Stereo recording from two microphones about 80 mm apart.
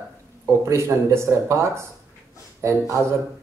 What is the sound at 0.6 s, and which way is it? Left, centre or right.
Speech, right.